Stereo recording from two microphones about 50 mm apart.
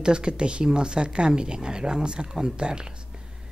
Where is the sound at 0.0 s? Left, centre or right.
Centre.